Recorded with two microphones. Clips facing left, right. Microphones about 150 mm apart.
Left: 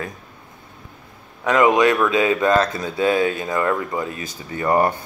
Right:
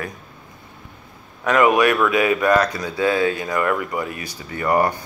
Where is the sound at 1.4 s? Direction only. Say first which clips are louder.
Even; 20° left (ahead or behind).